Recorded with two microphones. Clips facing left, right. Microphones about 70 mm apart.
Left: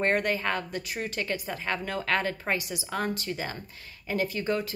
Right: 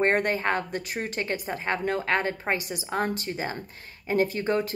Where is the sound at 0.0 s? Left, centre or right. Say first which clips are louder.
Right 3 dB; right.